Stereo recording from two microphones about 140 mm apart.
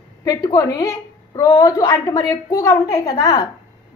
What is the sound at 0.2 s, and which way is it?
A woman's voice, 25° left (ahead or behind).